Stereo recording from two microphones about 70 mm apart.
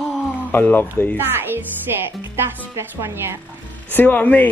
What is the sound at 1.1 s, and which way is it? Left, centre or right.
Speech, right.